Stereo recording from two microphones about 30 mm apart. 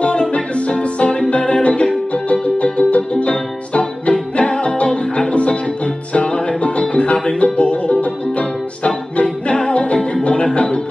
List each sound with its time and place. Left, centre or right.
0.0 s music: left
9.2 s music: left